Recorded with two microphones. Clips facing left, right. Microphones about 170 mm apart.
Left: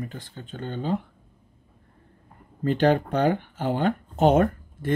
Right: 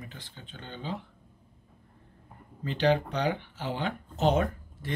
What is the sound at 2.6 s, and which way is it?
Speech, 50° left (ahead or behind).